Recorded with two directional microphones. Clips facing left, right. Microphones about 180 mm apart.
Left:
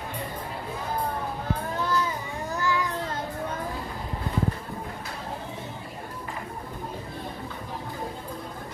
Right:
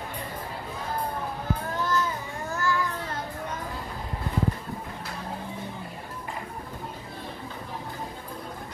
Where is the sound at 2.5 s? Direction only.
15° left (ahead or behind).